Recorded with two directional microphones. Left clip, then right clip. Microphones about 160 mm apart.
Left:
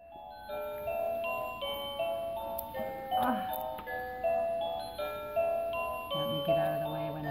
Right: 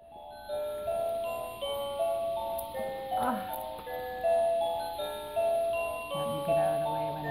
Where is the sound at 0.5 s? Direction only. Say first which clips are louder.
Right 3 dB; 30° right (ahead or behind).